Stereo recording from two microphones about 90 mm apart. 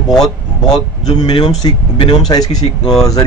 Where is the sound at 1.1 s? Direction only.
85° left.